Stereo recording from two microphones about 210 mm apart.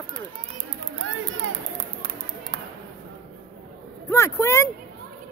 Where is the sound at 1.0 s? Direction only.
65° right (ahead or behind).